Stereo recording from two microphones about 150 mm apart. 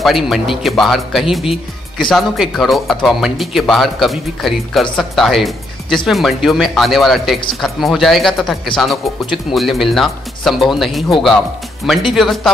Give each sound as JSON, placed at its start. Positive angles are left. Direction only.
{"t": 0.0, "sound": "speech", "side_deg": 0}